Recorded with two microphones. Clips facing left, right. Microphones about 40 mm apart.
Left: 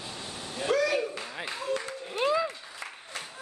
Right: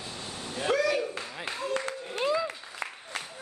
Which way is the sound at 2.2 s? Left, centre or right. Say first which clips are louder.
Left 1 dB; centre.